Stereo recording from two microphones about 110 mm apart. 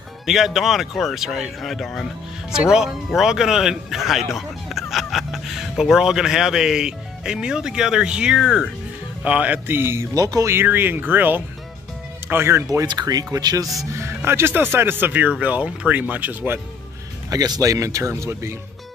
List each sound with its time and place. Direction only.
0.3 s speech: centre (ahead or behind); by 12.6 s 20° right (ahead or behind)
12.6 s speech: 35° right (ahead or behind)
13.9 s speech: 25° right (ahead or behind)
17.3 s speech: 35° right (ahead or behind)